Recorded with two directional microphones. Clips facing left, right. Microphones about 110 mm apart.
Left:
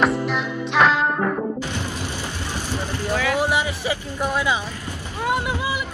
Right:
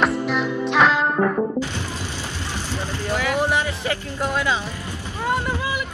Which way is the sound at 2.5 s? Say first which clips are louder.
Left 1 dB; 15° left (ahead or behind).